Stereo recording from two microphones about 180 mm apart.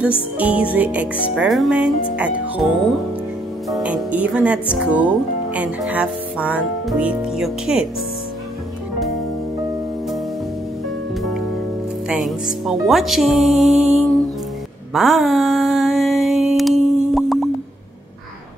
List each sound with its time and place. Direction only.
0.4 s music: 5° right (ahead or behind)
0.7 s speech: 10° right (ahead or behind)
3.7 s speech: 5° right (ahead or behind)
12.1 s speech: 5° right (ahead or behind)
15.0 s a sound: centre (ahead or behind)